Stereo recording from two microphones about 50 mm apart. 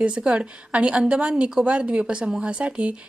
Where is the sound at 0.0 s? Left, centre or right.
Right.